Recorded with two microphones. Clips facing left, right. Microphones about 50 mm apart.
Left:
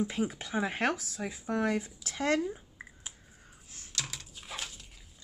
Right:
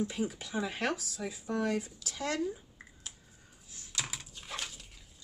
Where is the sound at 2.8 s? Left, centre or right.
Left.